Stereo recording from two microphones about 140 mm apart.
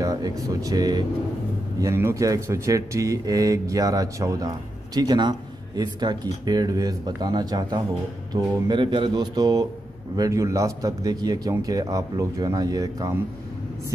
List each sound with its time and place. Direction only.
0.0 s speech: 25° right (ahead or behind)